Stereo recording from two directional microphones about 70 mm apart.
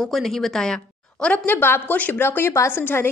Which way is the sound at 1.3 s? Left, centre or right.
Left.